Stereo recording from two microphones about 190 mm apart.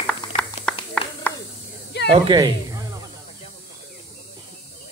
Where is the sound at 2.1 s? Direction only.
20° right (ahead or behind).